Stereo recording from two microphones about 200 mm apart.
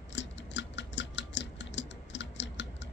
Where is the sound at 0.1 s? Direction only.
65° left (ahead or behind).